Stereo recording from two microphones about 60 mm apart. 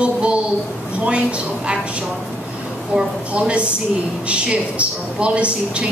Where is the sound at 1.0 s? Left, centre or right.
Centre.